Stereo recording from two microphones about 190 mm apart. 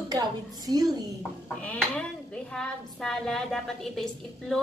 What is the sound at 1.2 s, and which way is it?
A woman's voice, 5° left (ahead or behind).